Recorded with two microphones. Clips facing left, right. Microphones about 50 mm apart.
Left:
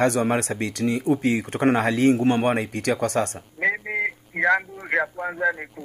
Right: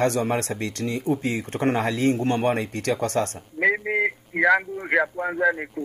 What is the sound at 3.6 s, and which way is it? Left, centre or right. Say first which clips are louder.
Speech: right 2 dB; centre.